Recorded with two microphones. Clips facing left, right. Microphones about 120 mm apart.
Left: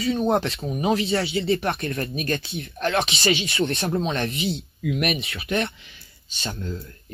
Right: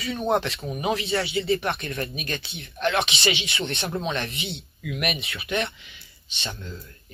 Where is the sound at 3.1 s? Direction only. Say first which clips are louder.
Left 3 dB; 25° right (ahead or behind).